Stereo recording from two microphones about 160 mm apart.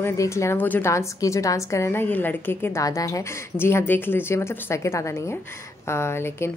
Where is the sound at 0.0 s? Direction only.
20° left (ahead or behind).